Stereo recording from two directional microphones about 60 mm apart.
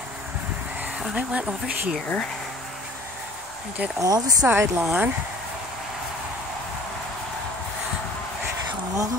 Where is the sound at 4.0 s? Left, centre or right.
Right.